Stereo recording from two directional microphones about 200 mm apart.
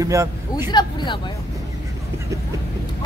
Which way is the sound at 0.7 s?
25° left (ahead or behind).